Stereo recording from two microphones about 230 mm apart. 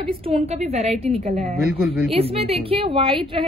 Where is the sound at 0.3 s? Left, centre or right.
Right.